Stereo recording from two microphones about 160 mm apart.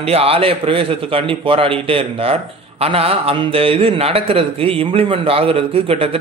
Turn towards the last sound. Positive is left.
turn(degrees=-35)  # may be behind; listen again after turning